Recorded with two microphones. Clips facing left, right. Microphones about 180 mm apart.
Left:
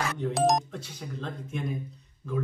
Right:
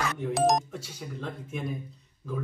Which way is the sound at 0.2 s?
Centre (ahead or behind).